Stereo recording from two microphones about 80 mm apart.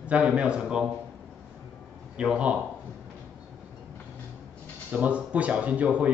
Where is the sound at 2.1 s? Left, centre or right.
Centre.